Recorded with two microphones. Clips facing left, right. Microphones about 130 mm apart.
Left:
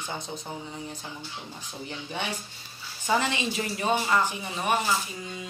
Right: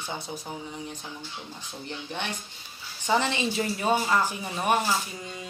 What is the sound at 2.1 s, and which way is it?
Speech, 10° left (ahead or behind).